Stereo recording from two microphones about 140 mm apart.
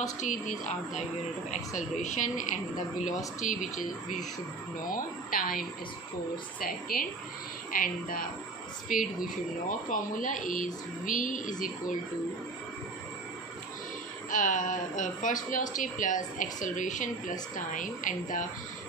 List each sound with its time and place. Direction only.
0.0 s speech: 60° left (ahead or behind)
4.8 s a woman's voice: 85° left
8.9 s speech: 75° left (ahead or behind)
14.3 s speech: 65° left (ahead or behind)